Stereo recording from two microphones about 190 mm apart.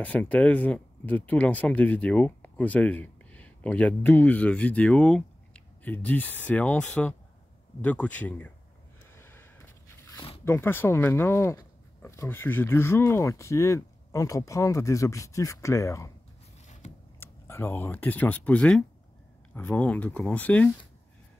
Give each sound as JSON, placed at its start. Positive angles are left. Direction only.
{"t": 0.0, "sound": "speech", "side_deg": 10}
{"t": 9.1, "sound": "a sound", "side_deg": 10}
{"t": 10.4, "sound": "speech", "side_deg": 10}
{"t": 17.2, "sound": "speech", "side_deg": 15}